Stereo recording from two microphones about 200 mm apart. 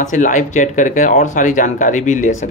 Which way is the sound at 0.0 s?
40° left (ahead or behind).